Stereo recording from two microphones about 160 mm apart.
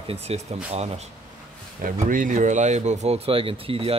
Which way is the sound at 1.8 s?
60° right (ahead or behind).